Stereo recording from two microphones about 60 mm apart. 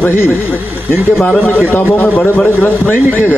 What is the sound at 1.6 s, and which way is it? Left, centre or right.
Speech, left.